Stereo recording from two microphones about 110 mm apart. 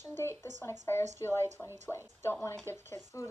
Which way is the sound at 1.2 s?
20° left (ahead or behind).